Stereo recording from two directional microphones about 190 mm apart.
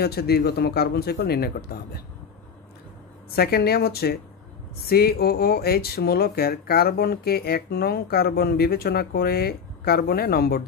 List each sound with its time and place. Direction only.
0.0 s speech: 55° left (ahead or behind)
3.3 s speech: 55° left (ahead or behind)